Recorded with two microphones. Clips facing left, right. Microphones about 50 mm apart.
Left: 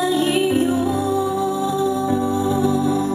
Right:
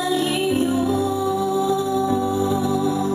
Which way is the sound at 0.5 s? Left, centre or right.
Centre.